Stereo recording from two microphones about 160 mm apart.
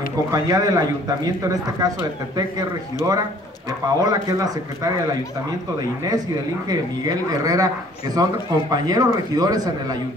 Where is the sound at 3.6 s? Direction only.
20° right (ahead or behind).